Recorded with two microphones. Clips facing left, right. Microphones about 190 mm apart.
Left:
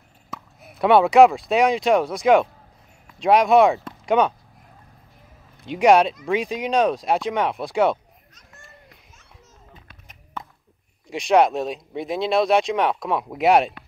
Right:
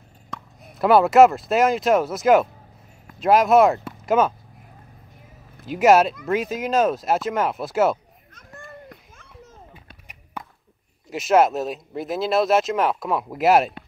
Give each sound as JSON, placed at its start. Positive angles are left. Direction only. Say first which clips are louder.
{"t": 0.3, "sound": "speech", "louder": "even", "side_deg": 0}
{"t": 5.6, "sound": "speech", "louder": "even", "side_deg": -5}
{"t": 8.4, "sound": "children playing", "louder": "right 11 dB", "side_deg": -55}
{"t": 11.1, "sound": "speech", "louder": "even", "side_deg": -5}